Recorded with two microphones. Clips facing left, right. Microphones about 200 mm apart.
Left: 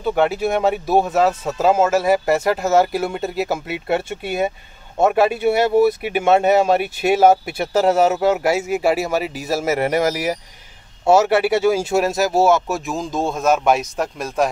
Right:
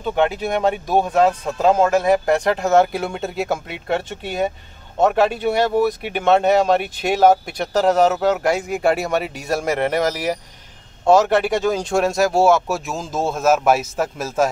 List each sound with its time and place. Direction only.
0.0 s speech: 5° left (ahead or behind)